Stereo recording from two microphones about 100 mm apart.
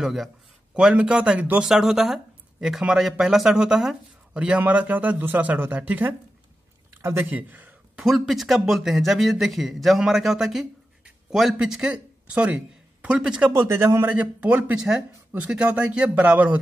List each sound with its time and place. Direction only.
0.0 s a man's voice: 5° right (ahead or behind)
8.0 s a man's voice: 5° right (ahead or behind)
13.6 s a man's voice: 25° right (ahead or behind)
14.1 s speech: 15° right (ahead or behind)